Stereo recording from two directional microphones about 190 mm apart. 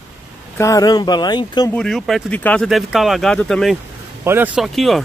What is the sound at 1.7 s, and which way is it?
Speech, 5° left (ahead or behind).